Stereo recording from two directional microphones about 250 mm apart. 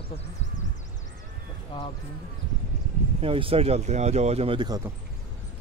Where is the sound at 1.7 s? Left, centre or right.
Centre.